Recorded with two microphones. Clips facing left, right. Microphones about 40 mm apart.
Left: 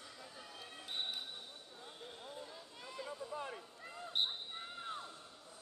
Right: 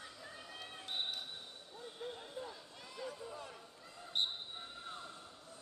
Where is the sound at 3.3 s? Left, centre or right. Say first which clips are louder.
Left 5 dB; left.